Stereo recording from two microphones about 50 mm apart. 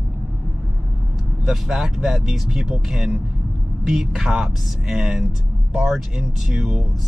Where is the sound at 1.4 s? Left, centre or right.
Centre.